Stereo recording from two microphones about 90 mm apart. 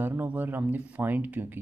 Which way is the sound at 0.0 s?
20° right (ahead or behind).